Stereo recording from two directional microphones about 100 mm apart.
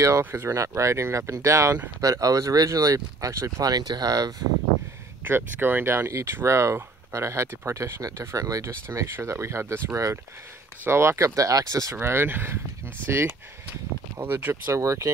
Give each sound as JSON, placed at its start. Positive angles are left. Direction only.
{"t": 0.0, "sound": "speech", "side_deg": -30}
{"t": 5.2, "sound": "speech", "side_deg": -20}